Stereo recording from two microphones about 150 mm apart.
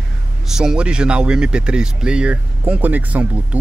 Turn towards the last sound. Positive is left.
turn(degrees=-10)  # may be behind; listen again after turning